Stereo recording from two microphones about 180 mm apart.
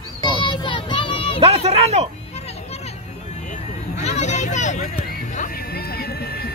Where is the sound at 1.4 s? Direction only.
35° right (ahead or behind).